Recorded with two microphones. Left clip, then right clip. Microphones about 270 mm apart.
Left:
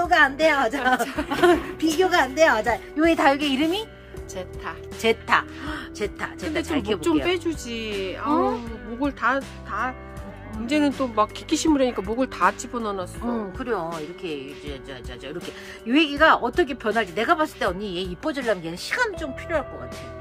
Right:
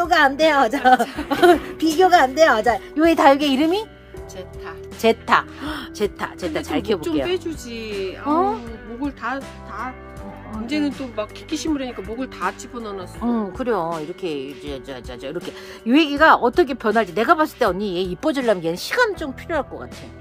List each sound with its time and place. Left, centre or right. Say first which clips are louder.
0.0 s speech: right 2 dB; right
5.0 s speech: right 4 dB; right
7.2 s speech: even; centre
8.3 s speech: right 3 dB; centre
9.0 s speech: left 4 dB; centre
11.1 s speech: left 4 dB; left
13.6 s speech: right 5 dB; right